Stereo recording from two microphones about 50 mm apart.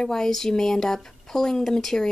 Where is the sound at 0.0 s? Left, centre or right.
Centre.